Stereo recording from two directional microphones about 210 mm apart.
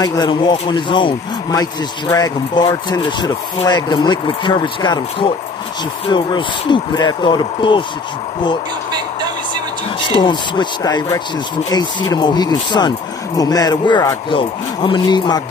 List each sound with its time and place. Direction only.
0.0 s speech: 20° left (ahead or behind)
10.0 s speech: 25° left (ahead or behind)